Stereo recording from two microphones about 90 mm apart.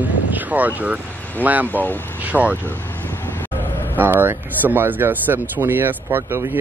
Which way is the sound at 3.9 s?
20° right (ahead or behind).